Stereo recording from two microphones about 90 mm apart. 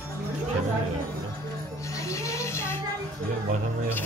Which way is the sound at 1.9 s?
35° left (ahead or behind).